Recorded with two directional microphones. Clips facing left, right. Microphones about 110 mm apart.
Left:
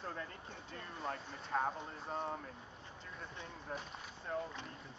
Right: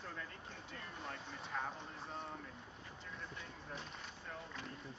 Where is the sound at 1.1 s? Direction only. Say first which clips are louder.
Left 7 dB; 45° left (ahead or behind).